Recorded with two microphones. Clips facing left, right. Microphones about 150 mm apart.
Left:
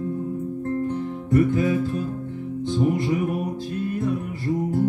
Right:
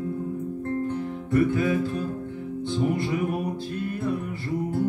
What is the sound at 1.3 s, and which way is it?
Music, 40° left (ahead or behind).